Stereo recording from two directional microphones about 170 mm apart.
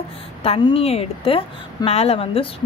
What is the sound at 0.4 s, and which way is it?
A woman's voice, 35° left (ahead or behind).